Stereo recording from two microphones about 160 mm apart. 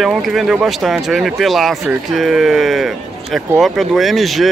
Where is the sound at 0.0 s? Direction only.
Centre (ahead or behind).